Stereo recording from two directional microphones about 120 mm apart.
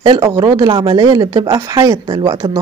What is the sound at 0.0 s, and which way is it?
Speech, 30° right (ahead or behind).